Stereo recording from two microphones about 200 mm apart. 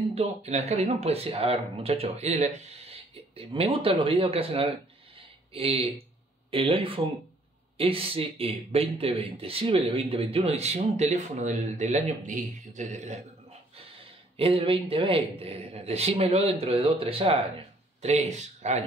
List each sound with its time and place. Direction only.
0.1 s speech: 30° right (ahead or behind)